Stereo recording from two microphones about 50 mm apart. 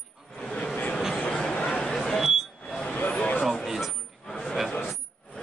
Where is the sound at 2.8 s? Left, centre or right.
Left.